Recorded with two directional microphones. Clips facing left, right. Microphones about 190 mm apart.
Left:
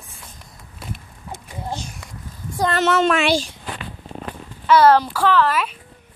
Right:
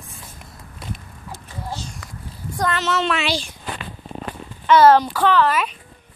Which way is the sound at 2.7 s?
50° left (ahead or behind).